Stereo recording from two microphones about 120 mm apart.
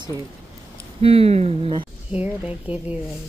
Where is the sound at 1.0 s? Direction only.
55° right (ahead or behind).